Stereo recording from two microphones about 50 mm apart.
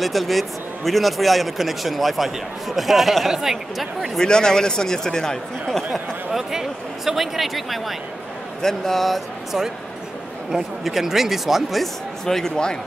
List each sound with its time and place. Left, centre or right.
0.0 s a man's voice: centre
4.2 s speech: centre
6.3 s a man's voice: centre